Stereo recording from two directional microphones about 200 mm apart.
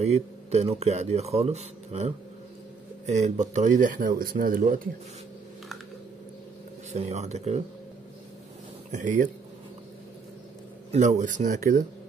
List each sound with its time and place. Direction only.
0.0 s speech: 30° right (ahead or behind)
6.9 s speech: 35° right (ahead or behind)
8.9 s speech: 40° right (ahead or behind)
10.9 s speech: 35° right (ahead or behind)